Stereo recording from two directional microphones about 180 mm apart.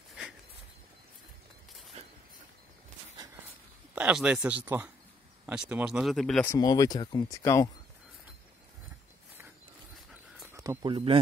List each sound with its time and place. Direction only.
3.9 s speech: 5° right (ahead or behind)
6.4 s speech: 20° left (ahead or behind)
10.5 s speech: 20° right (ahead or behind)